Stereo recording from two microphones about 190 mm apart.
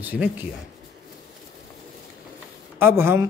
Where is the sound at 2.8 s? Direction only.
10° right (ahead or behind).